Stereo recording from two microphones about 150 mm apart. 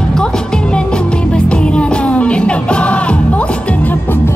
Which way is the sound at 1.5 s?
5° left (ahead or behind).